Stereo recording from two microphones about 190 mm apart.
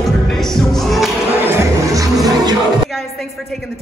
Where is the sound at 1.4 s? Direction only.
15° right (ahead or behind).